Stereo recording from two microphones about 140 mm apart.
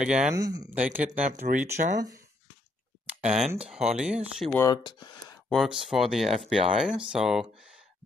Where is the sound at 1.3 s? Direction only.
65° right (ahead or behind).